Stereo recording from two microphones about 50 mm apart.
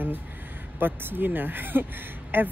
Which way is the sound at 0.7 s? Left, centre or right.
Right.